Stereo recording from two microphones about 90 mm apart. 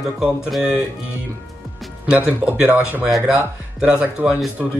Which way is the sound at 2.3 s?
20° right (ahead or behind).